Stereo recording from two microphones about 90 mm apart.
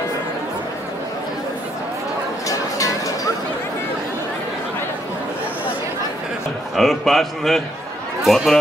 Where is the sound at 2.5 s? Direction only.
40° left (ahead or behind).